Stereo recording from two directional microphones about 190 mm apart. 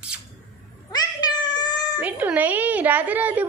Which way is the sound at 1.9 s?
10° right (ahead or behind).